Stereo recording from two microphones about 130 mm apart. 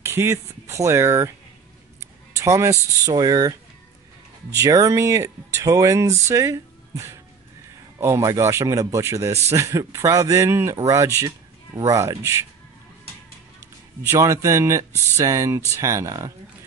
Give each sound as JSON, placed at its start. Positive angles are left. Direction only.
{"t": 0.0, "sound": "speech", "side_deg": -20}
{"t": 2.3, "sound": "speech", "side_deg": -20}
{"t": 4.6, "sound": "speech", "side_deg": -25}
{"t": 14.0, "sound": "speech", "side_deg": -25}